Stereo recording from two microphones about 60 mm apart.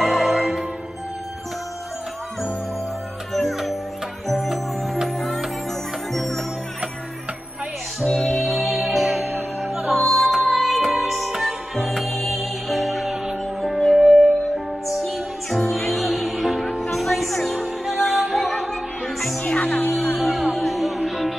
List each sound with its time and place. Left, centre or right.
0.0 s music: centre
3.3 s music: centre
8.1 s music: centre
8.8 s music: centre
9.8 s music: right
10.0 s music: centre
19.4 s music: left
20.5 s music: centre